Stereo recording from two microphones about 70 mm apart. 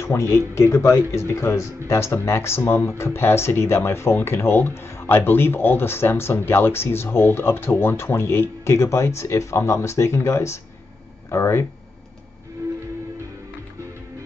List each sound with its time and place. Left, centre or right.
0.0 s speech: left